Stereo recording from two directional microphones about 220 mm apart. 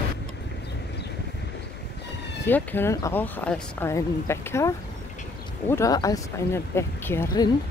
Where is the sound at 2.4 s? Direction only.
10° left (ahead or behind).